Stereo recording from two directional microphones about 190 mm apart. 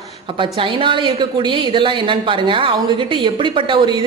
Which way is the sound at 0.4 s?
25° right (ahead or behind).